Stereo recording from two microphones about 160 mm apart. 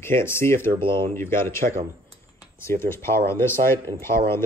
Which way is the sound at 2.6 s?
15° left (ahead or behind).